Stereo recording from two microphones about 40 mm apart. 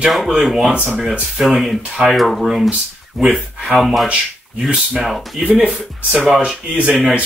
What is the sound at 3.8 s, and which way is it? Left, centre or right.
Speech, centre.